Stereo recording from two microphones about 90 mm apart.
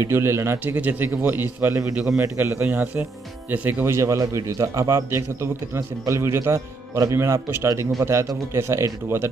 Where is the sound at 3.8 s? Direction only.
30° right (ahead or behind).